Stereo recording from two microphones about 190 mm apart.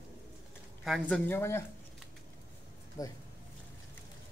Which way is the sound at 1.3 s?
15° left (ahead or behind).